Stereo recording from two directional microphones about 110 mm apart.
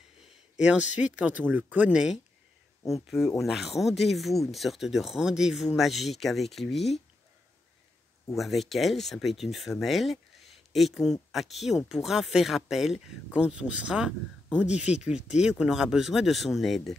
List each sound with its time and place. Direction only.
0.2 s a sound: 10° right (ahead or behind)
1.1 s speech: 15° right (ahead or behind); by 7.0 s centre (ahead or behind)
8.3 s speech: centre (ahead or behind)